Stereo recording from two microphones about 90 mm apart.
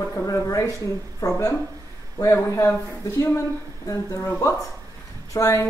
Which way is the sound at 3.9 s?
35° left (ahead or behind).